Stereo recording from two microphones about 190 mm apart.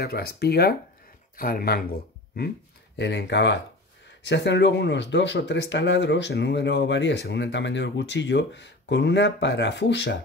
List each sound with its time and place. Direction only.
0.0 s speech: 55° left (ahead or behind)
3.0 s speech: 65° left (ahead or behind)